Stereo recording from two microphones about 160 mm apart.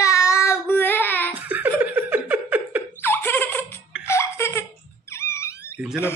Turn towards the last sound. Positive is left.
turn(degrees=-5)  # may be behind; listen again after turning